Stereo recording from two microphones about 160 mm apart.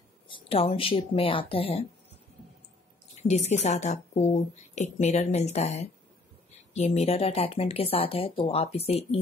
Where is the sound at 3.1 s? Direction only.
45° left (ahead or behind).